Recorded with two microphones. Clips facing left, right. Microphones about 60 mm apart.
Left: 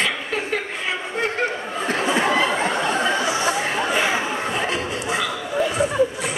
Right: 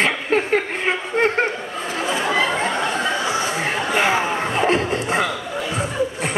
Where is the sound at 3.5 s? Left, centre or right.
Right.